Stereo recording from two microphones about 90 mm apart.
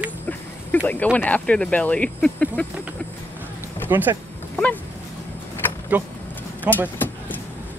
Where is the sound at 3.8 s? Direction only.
20° right (ahead or behind).